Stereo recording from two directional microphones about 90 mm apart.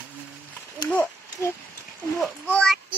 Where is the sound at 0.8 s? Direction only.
25° left (ahead or behind).